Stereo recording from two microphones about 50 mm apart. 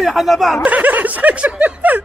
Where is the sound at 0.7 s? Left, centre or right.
Right.